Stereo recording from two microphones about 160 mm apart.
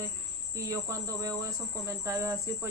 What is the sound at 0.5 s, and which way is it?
Speech, 20° right (ahead or behind).